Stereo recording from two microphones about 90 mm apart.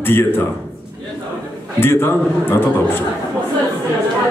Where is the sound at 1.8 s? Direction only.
25° left (ahead or behind).